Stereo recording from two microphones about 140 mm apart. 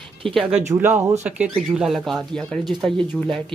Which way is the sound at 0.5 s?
15° right (ahead or behind).